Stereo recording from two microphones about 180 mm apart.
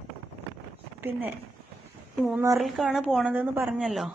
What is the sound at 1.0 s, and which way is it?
Speech, 10° right (ahead or behind).